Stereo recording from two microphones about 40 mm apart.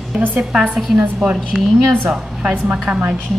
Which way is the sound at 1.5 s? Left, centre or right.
Centre.